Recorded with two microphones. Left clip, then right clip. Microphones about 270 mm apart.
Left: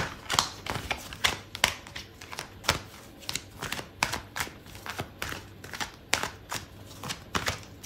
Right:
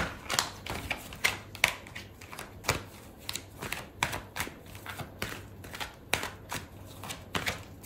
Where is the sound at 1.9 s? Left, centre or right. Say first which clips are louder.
Left 3 dB; centre.